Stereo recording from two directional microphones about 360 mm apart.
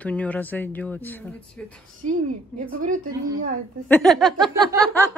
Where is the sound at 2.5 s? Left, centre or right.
Right.